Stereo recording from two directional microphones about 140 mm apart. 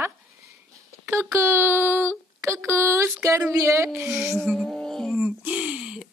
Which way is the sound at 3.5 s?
20° right (ahead or behind).